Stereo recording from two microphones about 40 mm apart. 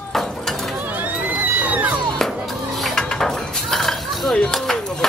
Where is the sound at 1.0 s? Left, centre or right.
Right.